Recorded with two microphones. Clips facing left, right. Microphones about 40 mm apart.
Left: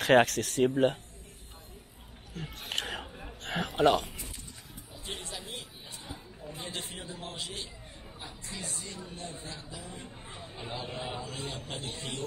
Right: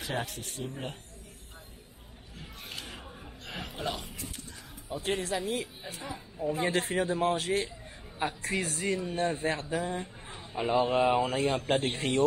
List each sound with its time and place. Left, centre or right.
0.0 s speech: left
2.3 s a sound: left
4.8 s speech: right
8.2 s speech: right
10.5 s speech: right